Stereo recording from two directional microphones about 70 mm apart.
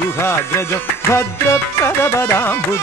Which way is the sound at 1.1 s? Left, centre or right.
Left.